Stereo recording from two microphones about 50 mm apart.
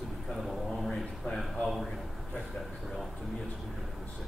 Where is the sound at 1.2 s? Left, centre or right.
Left.